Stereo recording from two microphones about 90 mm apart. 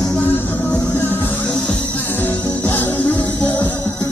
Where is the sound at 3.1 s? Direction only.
55° left (ahead or behind).